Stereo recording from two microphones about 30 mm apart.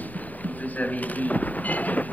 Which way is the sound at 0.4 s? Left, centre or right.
Left.